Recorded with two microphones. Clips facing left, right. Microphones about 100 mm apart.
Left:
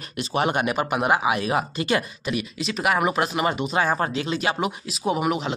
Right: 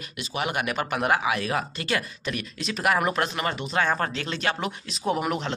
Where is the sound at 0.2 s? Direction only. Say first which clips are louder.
Left 6 dB; 35° left (ahead or behind); by 2.4 s 20° left (ahead or behind).